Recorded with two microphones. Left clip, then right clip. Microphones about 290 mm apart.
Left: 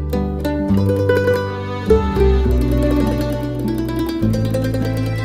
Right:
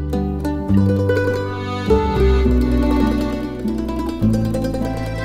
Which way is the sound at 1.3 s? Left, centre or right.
Centre.